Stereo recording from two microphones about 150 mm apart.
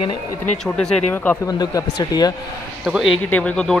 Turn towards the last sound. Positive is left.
turn(degrees=5)  # may be behind; listen again after turning